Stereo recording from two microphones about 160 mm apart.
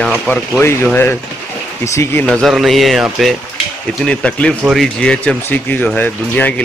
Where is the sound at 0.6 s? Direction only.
15° left (ahead or behind).